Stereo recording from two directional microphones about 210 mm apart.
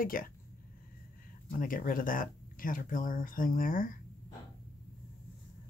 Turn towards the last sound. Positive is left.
turn(degrees=40)  # may be behind; listen again after turning